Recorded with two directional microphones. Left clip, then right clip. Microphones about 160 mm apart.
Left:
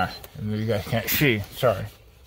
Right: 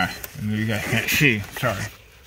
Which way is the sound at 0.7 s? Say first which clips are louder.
Right 3 dB; 15° left (ahead or behind).